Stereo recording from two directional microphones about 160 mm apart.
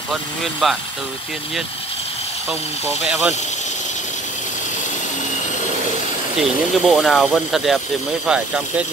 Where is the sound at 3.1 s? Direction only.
10° right (ahead or behind).